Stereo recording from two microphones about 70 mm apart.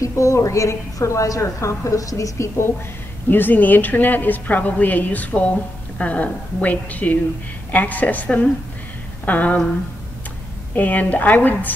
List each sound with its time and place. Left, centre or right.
0.0 s a woman's voice: left
3.3 s a woman's voice: left
10.8 s a woman's voice: left